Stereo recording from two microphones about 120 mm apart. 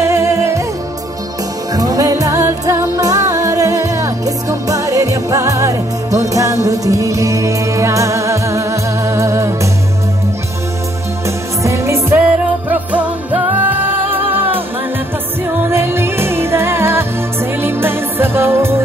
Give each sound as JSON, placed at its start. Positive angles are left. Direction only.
{"t": 0.0, "sound": "music", "side_deg": -25}
{"t": 1.7, "sound": "music", "side_deg": -30}
{"t": 11.2, "sound": "music", "side_deg": -25}
{"t": 15.6, "sound": "music", "side_deg": -20}